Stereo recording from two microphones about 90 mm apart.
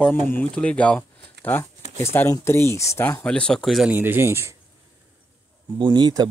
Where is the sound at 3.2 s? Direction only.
10° left (ahead or behind).